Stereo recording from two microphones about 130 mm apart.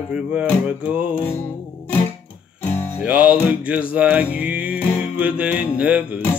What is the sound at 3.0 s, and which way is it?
Music, 10° right (ahead or behind).